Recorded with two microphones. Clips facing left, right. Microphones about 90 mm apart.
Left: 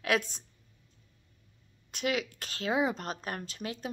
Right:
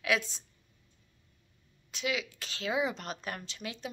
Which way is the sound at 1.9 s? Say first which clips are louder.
Left 3 dB; 50° left (ahead or behind).